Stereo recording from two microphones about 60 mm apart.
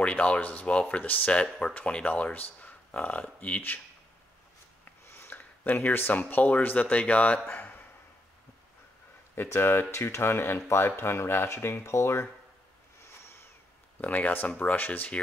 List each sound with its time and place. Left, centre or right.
0.0 s speech: centre
4.8 s a sound: left
5.3 s speech: left
9.3 s speech: left
14.0 s speech: left